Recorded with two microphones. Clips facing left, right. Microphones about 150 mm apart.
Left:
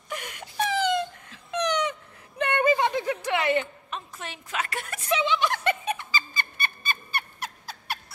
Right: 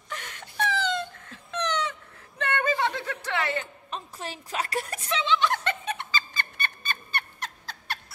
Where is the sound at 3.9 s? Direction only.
35° right (ahead or behind).